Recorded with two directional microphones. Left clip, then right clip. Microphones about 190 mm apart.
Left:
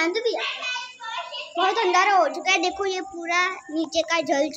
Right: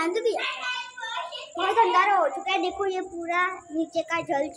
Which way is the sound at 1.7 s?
25° left (ahead or behind).